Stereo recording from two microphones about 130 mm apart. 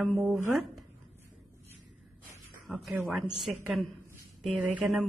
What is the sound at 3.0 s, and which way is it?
Speech, centre (ahead or behind).